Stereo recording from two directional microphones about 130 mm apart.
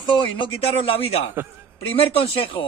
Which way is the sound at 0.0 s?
40° left (ahead or behind).